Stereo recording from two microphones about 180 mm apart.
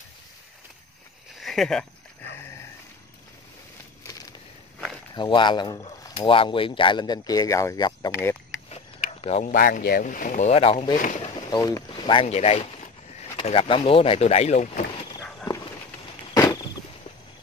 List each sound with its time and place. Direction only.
1.4 s speech: centre (ahead or behind)
5.1 s speech: 25° left (ahead or behind)
8.6 s a sound: 35° left (ahead or behind)
9.5 s speech: 50° left (ahead or behind); by 11.0 s 30° left (ahead or behind)
11.5 s speech: 20° left (ahead or behind); by 14.7 s 35° left (ahead or behind)